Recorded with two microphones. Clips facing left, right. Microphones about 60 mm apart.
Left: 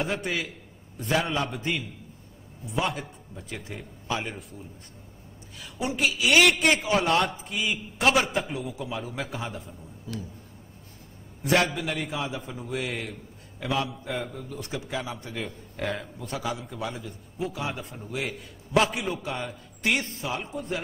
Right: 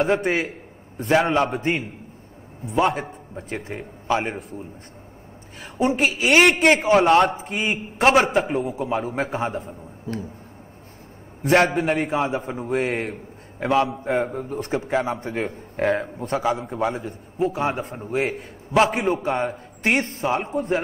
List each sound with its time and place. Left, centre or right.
0.1 s a man's voice: right
11.4 s a man's voice: right